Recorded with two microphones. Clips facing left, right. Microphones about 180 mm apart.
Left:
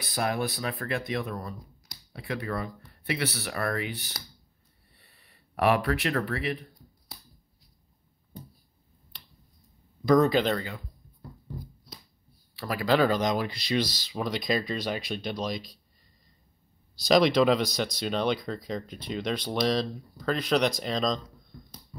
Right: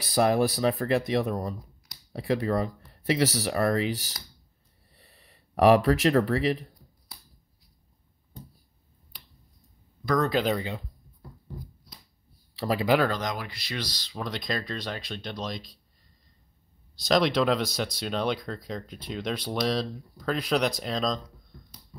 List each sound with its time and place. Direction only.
0.0 s speech: 35° right (ahead or behind)
10.2 s speech: centre (ahead or behind)
10.5 s speech: 20° right (ahead or behind)
12.5 s speech: 30° right (ahead or behind)
13.1 s speech: 20° left (ahead or behind); by 15.8 s 5° left (ahead or behind)
17.0 s speech: centre (ahead or behind)